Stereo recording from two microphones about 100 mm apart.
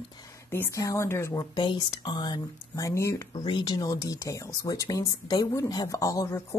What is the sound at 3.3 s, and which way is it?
Speech, 50° left (ahead or behind).